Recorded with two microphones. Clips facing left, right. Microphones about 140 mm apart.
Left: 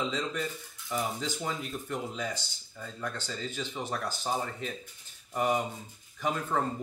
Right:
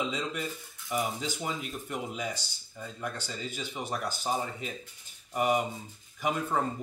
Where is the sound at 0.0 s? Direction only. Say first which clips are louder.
Left 1 dB; 10° right (ahead or behind).